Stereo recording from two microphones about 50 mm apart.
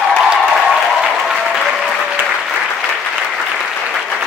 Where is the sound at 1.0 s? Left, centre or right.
Centre.